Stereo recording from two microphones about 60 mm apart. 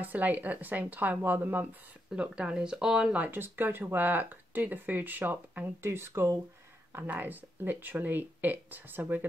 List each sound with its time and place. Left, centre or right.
0.0 s speech: right
2.3 s speech: centre
3.2 s speech: right
5.8 s speech: right
6.9 s speech: right